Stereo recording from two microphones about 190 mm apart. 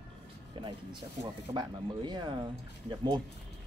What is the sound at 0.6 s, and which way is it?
Speech, 25° right (ahead or behind).